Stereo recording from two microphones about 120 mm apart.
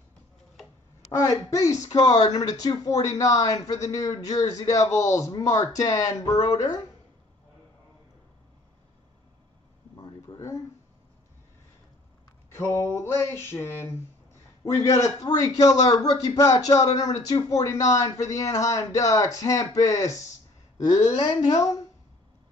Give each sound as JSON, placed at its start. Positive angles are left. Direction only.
{"t": 1.1, "sound": "a man's voice", "side_deg": 25}
{"t": 9.9, "sound": "a sound", "side_deg": 30}
{"t": 12.5, "sound": "a man's voice", "side_deg": 20}